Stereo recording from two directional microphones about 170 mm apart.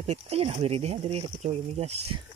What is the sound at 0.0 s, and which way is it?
Speech, 35° right (ahead or behind).